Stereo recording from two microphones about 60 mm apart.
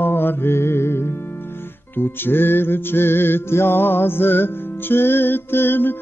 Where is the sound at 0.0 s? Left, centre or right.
Left.